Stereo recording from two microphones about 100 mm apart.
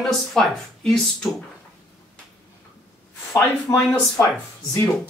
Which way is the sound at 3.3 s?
25° left (ahead or behind).